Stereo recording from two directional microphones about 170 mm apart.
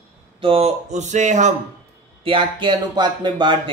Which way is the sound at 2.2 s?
30° right (ahead or behind).